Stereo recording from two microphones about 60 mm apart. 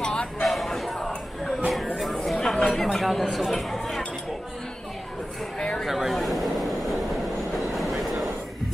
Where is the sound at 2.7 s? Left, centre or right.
Centre.